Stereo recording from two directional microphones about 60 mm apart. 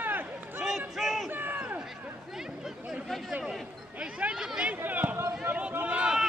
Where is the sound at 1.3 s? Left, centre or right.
Right.